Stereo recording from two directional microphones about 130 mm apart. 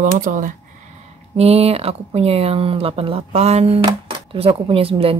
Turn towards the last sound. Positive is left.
turn(degrees=-45)  # may be behind; listen again after turning